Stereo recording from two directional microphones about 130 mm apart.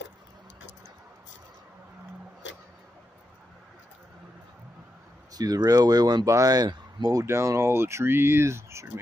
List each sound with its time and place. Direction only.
5.3 s speech: 30° right (ahead or behind)